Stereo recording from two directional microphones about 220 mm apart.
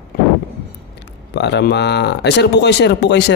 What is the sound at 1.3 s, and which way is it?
Speech, 50° left (ahead or behind).